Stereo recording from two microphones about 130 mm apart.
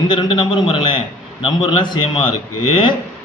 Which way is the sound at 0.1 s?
40° left (ahead or behind).